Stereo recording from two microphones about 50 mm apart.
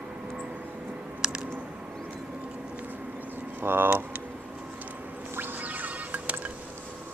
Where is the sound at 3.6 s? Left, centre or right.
Right.